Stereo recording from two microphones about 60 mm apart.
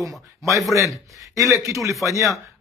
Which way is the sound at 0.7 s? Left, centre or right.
Right.